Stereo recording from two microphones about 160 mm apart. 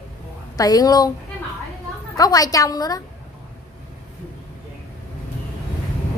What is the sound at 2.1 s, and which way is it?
Speech, 25° left (ahead or behind).